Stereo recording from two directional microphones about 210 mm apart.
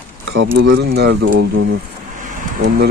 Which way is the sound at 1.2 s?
90° right.